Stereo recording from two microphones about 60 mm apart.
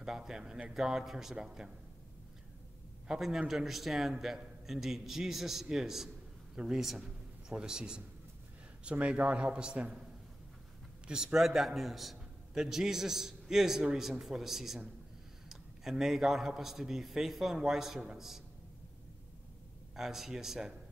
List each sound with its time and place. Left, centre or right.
0.0 s a man's voice: centre
3.1 s a man's voice: centre
9.0 s a man's voice: right
11.1 s a man's voice: centre
15.8 s a man's voice: centre
20.0 s a man's voice: centre